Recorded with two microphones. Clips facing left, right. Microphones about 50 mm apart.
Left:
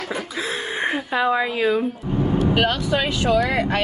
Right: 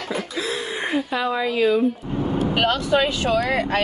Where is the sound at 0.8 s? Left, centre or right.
Left.